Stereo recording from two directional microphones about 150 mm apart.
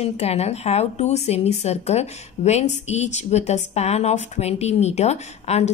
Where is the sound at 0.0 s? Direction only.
45° left (ahead or behind).